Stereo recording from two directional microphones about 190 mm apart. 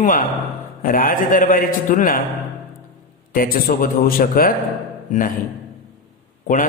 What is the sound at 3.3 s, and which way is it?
A man's voice, 45° left (ahead or behind).